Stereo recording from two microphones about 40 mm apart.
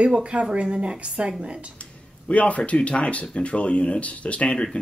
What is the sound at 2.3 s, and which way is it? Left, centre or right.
Speech, left.